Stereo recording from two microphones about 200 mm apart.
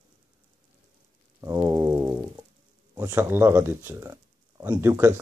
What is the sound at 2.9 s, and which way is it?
Speech, 15° right (ahead or behind).